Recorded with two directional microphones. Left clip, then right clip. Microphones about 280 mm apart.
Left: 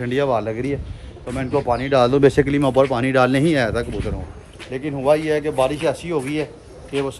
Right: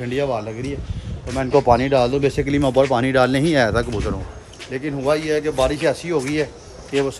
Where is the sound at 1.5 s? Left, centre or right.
Right.